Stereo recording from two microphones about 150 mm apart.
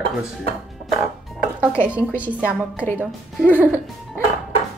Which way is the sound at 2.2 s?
10° right (ahead or behind).